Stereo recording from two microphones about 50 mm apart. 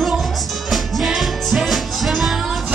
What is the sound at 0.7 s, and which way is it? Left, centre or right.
Music, centre.